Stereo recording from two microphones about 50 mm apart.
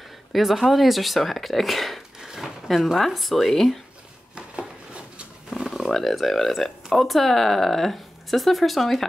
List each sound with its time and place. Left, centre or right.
0.3 s speech: centre
2.1 s speech: centre
4.4 s a sound: centre
5.5 s speech: centre